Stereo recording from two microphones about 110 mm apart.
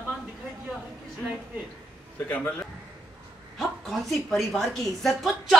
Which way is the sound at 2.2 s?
20° left (ahead or behind).